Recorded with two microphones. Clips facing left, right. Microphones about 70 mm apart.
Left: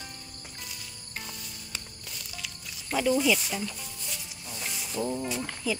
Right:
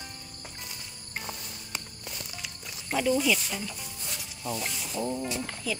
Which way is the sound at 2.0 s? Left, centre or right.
Right.